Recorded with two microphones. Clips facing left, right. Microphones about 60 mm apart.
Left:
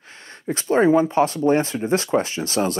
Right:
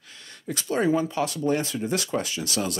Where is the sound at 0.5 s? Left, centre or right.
Left.